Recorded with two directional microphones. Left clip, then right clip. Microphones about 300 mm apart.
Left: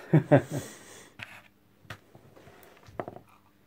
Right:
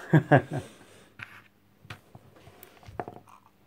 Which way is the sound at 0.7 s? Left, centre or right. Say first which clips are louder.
Left 4 dB; centre.